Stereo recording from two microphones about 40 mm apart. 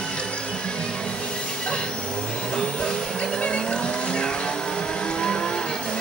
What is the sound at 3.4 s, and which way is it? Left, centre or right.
Vehicle, left.